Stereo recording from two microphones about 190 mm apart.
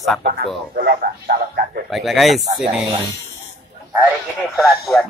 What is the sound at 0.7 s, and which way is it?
Speech, 45° right (ahead or behind).